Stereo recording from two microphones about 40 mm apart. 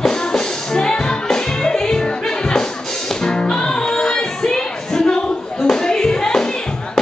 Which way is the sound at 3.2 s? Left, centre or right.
Left.